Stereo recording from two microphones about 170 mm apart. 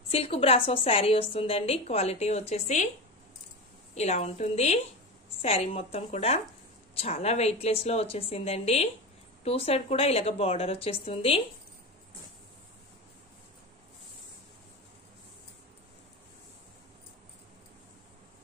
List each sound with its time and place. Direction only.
0.1 s a woman's voice: 35° left (ahead or behind)
3.9 s a woman's voice: 40° left (ahead or behind)